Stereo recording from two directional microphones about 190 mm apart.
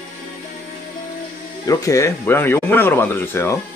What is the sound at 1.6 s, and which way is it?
Speech, 15° left (ahead or behind).